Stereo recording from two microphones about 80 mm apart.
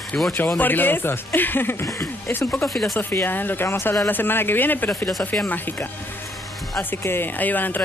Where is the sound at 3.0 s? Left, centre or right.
Left.